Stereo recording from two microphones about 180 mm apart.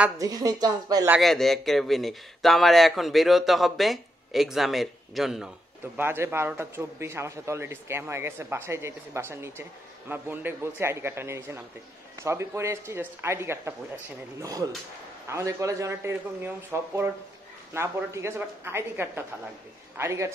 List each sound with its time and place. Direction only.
0.2 s a woman's voice: 20° right (ahead or behind)
1.1 s speech: centre (ahead or behind)
5.9 s a man's voice: 15° right (ahead or behind)